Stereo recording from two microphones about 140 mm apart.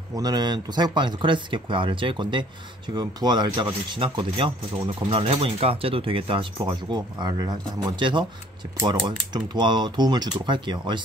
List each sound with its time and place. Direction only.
0.1 s speech: 25° right (ahead or behind)